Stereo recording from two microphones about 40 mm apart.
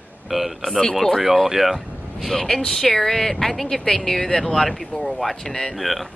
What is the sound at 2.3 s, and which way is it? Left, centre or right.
Speech, centre.